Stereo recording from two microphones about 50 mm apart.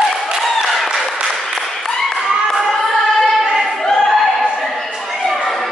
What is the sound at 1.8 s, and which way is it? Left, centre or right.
Clapping, centre.